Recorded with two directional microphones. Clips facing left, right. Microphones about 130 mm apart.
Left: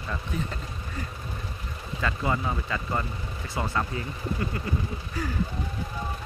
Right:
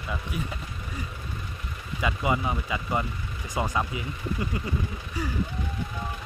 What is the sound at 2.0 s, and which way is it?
Speech, 15° right (ahead or behind).